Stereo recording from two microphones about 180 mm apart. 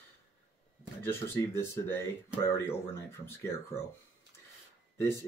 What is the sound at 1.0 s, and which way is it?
Speech, 15° left (ahead or behind).